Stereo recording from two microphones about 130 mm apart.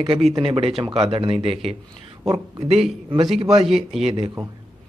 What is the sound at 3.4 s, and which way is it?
Speech, 45° right (ahead or behind).